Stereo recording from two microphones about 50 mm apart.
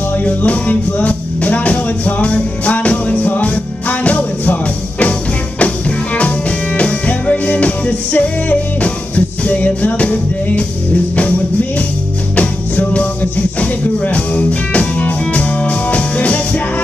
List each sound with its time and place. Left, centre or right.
0.2 s music: left
12.4 s music: left